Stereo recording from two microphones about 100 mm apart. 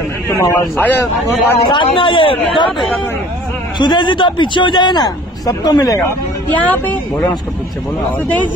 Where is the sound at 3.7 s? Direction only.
50° left (ahead or behind).